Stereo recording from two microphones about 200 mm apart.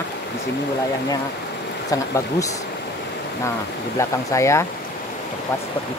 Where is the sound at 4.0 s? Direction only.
15° left (ahead or behind).